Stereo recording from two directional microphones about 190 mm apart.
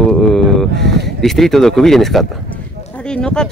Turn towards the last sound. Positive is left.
turn(degrees=5)  # may be behind; listen again after turning